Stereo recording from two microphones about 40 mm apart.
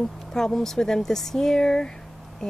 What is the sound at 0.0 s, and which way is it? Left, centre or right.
Speech, centre.